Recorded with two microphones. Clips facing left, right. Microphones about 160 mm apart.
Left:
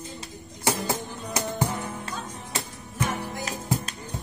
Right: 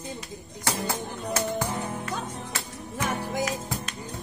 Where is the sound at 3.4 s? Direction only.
30° left (ahead or behind).